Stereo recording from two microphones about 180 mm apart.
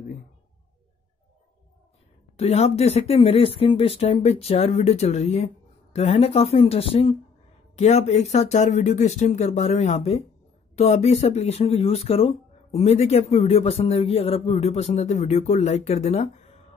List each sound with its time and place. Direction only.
2.3 s speech: 35° left (ahead or behind)